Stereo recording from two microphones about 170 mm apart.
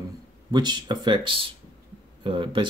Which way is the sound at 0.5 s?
25° right (ahead or behind).